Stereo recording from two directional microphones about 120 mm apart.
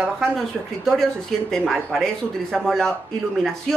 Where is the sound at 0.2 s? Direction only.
5° left (ahead or behind).